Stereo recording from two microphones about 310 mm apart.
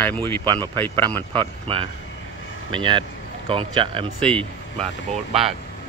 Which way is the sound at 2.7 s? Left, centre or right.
Centre.